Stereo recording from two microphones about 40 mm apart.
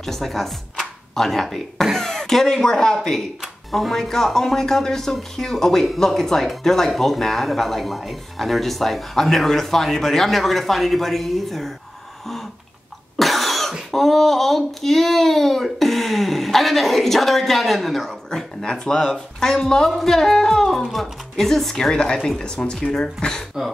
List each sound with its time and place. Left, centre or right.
0.0 s speech: centre
2.0 s speech: centre
13.2 s cough: centre
13.9 s speech: centre
18.9 s speech: centre